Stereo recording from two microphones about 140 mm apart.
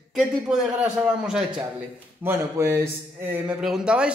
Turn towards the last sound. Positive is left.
turn(degrees=-5)  # may be behind; listen again after turning